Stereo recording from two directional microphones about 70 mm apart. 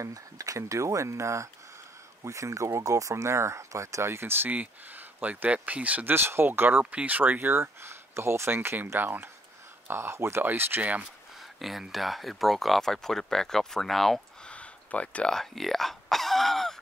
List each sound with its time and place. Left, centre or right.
0.0 s speech: right
6.1 s speech: right
11.6 s speech: centre
14.4 s a sound: centre
15.3 s speech: centre